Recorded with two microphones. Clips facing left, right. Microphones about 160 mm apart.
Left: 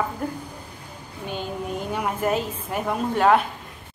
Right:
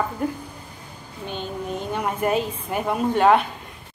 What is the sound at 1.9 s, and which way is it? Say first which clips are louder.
A woman's voice: right 2 dB; centre (ahead or behind).